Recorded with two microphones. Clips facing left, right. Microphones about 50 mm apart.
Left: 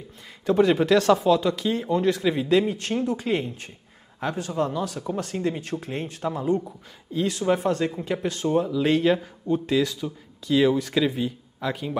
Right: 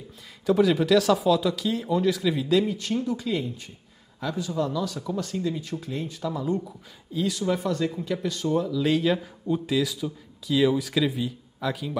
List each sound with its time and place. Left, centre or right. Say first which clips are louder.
0.5 s speech: left 1 dB; centre
2.6 s speech: left 1 dB; left
8.8 s speech: left 2 dB; centre